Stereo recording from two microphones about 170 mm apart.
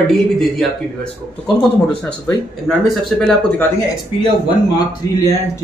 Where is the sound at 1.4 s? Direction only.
5° left (ahead or behind).